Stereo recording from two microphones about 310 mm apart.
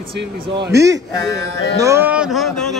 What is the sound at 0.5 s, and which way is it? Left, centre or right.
Speech, right.